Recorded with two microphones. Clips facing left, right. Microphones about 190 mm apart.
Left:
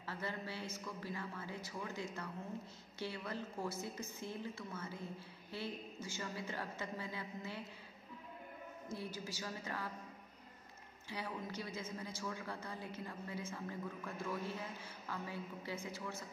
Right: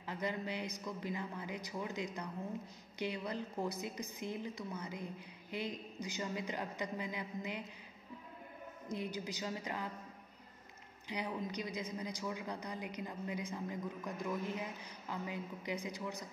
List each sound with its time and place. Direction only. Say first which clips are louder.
0.0 s a man's voice: right 4 dB; 15° right (ahead or behind)
8.8 s a woman's voice: right 5 dB; 20° right (ahead or behind)
11.1 s a man's voice: right 4 dB; 20° right (ahead or behind)